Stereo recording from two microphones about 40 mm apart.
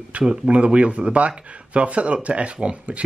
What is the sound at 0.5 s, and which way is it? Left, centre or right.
Speech, right.